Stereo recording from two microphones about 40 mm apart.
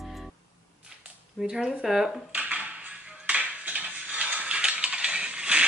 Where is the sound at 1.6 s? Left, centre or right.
Centre.